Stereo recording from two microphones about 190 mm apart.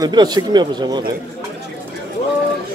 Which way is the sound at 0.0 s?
20° right (ahead or behind).